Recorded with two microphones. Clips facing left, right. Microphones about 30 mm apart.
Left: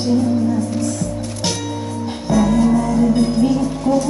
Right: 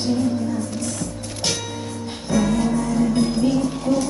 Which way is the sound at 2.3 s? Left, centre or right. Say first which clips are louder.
Left 5 dB; centre.